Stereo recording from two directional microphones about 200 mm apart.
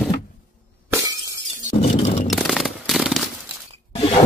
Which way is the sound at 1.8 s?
35° left (ahead or behind).